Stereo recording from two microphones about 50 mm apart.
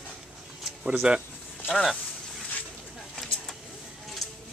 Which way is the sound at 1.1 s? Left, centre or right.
Centre.